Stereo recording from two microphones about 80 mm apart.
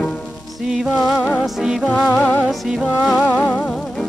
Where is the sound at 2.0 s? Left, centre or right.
Centre.